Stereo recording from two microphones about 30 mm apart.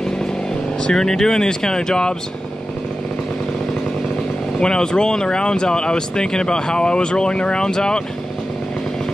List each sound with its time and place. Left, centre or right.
0.9 s speech: centre
4.6 s speech: left